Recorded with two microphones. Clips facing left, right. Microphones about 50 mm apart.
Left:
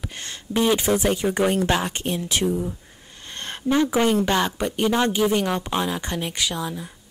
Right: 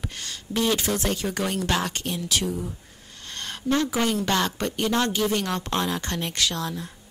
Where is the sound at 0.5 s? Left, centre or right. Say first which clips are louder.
Left 4 dB; centre.